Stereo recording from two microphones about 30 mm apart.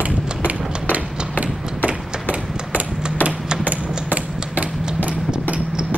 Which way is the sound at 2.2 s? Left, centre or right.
Left.